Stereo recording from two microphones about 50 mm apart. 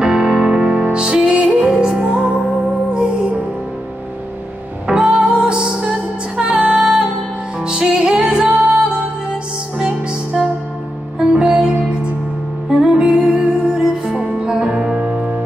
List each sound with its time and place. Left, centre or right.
0.0 s music: centre
4.9 s music: centre
6.7 s music: centre